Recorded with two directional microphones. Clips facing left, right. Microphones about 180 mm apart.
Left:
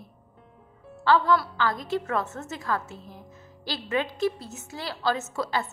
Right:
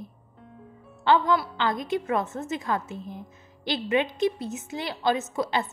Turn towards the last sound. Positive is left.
turn(degrees=-20)  # may be behind; listen again after turning